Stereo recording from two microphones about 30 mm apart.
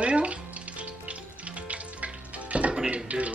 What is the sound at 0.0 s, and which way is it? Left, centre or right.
Music, right.